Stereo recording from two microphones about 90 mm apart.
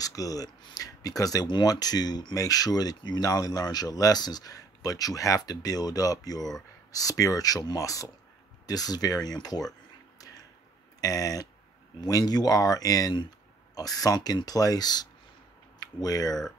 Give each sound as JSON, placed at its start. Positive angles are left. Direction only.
{"t": 0.0, "sound": "speech", "side_deg": 40}
{"t": 10.1, "sound": "a sound", "side_deg": 45}
{"t": 11.0, "sound": "speech", "side_deg": 40}